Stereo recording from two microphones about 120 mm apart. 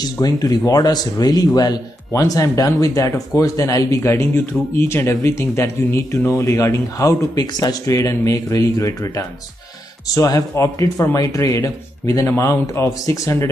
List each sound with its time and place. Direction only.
0.0 s speech: 35° left (ahead or behind)